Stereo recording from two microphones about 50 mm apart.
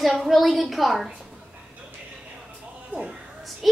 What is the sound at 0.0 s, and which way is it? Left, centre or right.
A child's voice, centre.